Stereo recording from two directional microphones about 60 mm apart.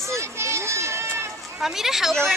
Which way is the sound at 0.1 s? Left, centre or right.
Right.